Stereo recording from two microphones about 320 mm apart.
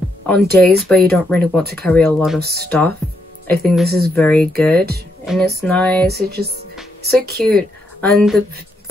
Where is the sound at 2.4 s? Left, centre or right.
Right.